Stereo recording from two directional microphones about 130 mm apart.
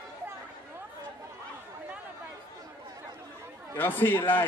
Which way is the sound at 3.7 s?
15° left (ahead or behind).